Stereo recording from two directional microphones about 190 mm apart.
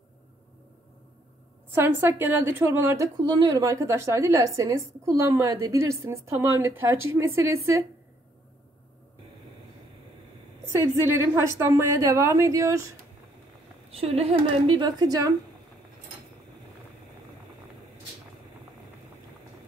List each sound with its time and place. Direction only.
1.7 s a woman's voice: 15° right (ahead or behind)
3.2 s a woman's voice: 25° right (ahead or behind)
10.7 s a woman's voice: 15° right (ahead or behind)
13.8 s a woman's voice: 30° right (ahead or behind)